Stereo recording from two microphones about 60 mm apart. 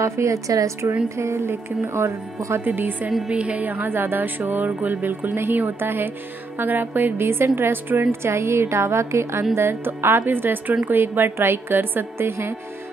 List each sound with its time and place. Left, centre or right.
0.0 s a woman's voice: right
1.0 s a woman's voice: right
2.6 s speech: right
3.3 s a woman's voice: right